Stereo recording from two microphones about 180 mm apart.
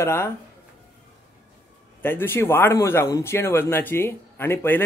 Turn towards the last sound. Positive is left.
turn(degrees=10)  # may be behind; listen again after turning